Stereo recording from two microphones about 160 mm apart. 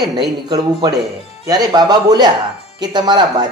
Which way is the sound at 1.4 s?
25° right (ahead or behind).